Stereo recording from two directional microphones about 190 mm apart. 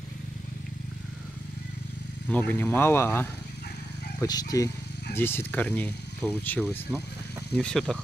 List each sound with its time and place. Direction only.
2.2 s speech: 10° left (ahead or behind)